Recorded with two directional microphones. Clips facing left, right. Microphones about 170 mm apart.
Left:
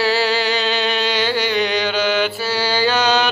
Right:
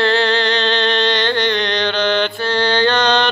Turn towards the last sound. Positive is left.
turn(degrees=5)  # may be behind; listen again after turning